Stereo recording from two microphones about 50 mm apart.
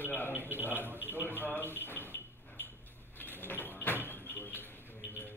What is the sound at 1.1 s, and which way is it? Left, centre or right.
Music, left.